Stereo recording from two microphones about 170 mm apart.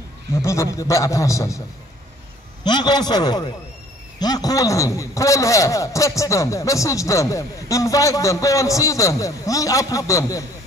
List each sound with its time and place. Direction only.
0.3 s a man's voice: 15° left (ahead or behind)
2.6 s a man's voice: 25° left (ahead or behind)